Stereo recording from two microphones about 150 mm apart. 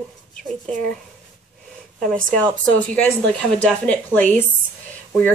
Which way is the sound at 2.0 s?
5° left (ahead or behind).